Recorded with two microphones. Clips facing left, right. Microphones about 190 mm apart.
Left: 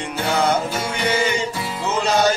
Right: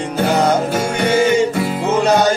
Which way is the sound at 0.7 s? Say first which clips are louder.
Right 6 dB; 50° right (ahead or behind).